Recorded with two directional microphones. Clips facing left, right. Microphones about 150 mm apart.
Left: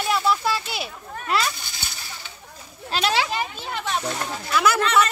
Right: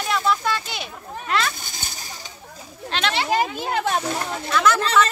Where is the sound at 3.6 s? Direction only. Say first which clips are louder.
Right 5 dB; 50° right (ahead or behind).